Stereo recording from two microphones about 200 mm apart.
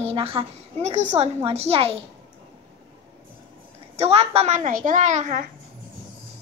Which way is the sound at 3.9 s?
30° right (ahead or behind).